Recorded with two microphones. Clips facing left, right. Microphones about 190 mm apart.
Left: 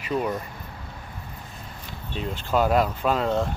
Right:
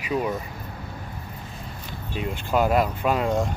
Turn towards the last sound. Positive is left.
turn(degrees=-10)  # may be behind; listen again after turning